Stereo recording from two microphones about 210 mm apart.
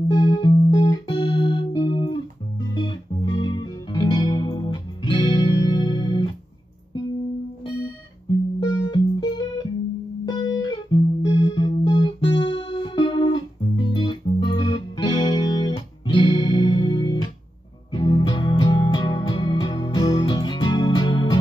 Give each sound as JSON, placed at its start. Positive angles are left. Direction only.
{"t": 0.1, "sound": "music", "side_deg": 20}
{"t": 8.5, "sound": "music", "side_deg": 20}